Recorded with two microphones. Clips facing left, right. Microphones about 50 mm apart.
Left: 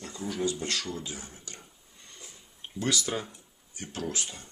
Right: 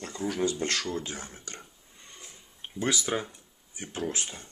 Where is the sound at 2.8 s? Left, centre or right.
Right.